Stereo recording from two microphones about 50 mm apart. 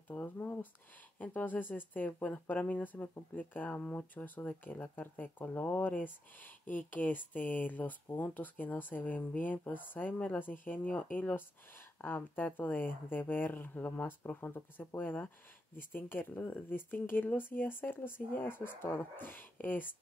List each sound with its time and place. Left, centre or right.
0.1 s speech: left